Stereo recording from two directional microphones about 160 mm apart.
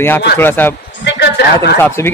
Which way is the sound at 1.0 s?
90° left.